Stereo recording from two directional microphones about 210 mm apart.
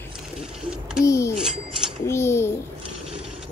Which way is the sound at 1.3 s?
5° right (ahead or behind).